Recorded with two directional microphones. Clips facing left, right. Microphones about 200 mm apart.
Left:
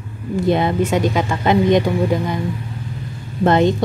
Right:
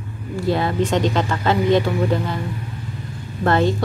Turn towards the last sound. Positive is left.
turn(degrees=20)  # may be behind; listen again after turning